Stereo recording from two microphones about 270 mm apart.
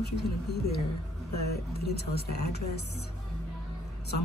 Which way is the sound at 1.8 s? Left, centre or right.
Left.